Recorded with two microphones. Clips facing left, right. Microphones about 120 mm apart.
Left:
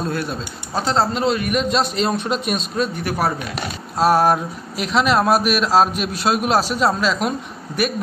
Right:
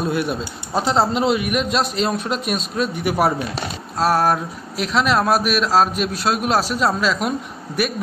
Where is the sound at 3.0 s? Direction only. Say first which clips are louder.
Right 6 dB; 20° right (ahead or behind).